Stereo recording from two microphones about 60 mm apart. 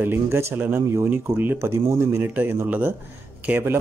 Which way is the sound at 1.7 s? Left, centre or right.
Right.